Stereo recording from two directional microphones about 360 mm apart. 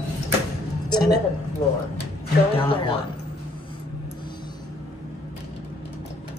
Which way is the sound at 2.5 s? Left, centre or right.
Centre.